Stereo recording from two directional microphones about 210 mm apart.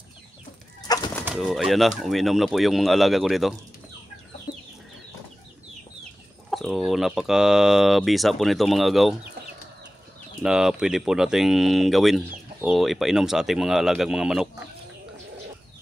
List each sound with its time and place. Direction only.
0.8 s bird: 15° left (ahead or behind)
1.2 s speech: centre (ahead or behind)
4.5 s chicken: 45° left (ahead or behind)
6.5 s speech: centre (ahead or behind)
10.4 s speech: 5° right (ahead or behind)